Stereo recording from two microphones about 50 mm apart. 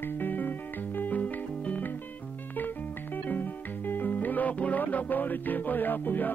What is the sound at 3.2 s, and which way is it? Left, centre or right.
Music, left.